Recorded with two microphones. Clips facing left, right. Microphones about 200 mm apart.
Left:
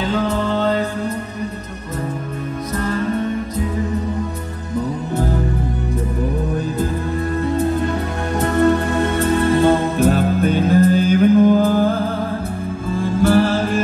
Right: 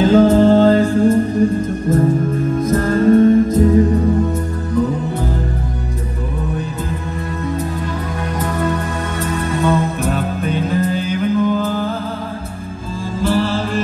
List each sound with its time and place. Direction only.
0.0 s music: 45° right (ahead or behind)
2.7 s music: 50° right (ahead or behind)
10.0 s music: 45° left (ahead or behind)
13.0 s music: 55° left (ahead or behind)